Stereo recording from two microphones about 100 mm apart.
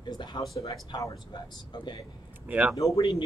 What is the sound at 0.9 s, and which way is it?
Speech, 40° left (ahead or behind).